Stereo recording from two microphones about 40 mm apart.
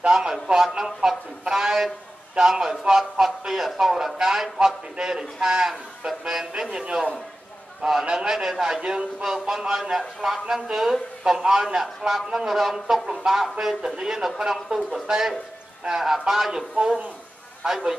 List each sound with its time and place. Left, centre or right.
0.0 s speech: right
0.3 s a man's voice: centre
16.7 s a man's voice: centre
17.6 s a man's voice: centre